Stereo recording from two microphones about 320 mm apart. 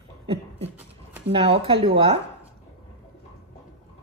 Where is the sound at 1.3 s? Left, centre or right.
Centre.